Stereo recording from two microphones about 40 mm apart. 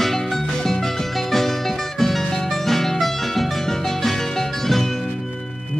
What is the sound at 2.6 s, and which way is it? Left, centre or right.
Music, centre.